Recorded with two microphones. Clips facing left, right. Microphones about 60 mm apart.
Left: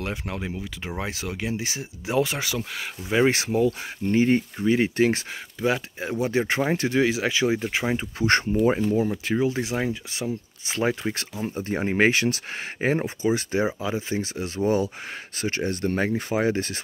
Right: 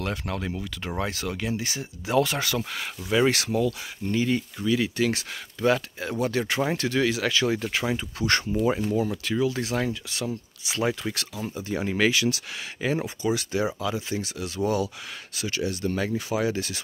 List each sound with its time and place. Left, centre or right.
0.0 s speech: centre
3.1 s speech: left
5.6 s speech: centre
10.6 s speech: left